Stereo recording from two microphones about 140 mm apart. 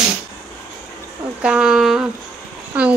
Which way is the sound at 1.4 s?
5° right (ahead or behind).